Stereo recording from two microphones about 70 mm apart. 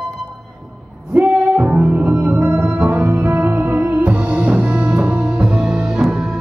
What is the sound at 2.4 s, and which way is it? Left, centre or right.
Music, right.